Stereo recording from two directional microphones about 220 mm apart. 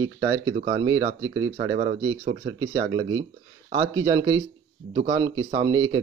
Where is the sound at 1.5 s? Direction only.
30° right (ahead or behind).